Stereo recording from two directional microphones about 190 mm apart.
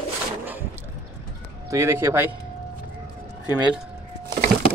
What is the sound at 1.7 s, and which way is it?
Speech, 15° right (ahead or behind).